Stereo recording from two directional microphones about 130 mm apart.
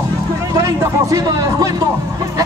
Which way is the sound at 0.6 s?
25° right (ahead or behind).